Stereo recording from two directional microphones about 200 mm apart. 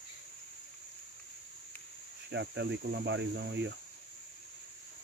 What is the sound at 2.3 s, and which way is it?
Speech, 60° right (ahead or behind).